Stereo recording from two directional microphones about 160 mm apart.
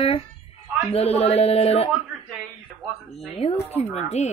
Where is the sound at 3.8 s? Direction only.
45° left (ahead or behind).